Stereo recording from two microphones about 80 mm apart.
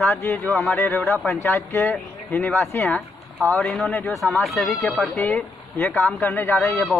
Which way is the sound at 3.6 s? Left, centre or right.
Centre.